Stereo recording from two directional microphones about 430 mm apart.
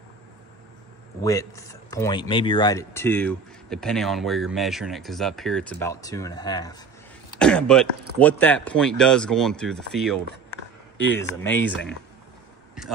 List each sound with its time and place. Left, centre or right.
1.2 s speech: centre